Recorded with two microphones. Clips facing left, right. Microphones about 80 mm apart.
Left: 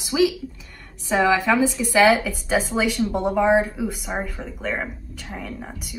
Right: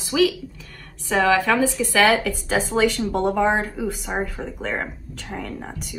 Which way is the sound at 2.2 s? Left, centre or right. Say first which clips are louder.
Even; centre.